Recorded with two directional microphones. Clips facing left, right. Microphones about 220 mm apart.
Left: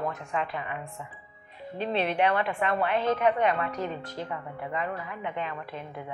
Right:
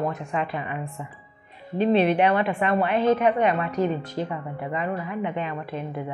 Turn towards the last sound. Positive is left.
turn(degrees=-10)  # may be behind; listen again after turning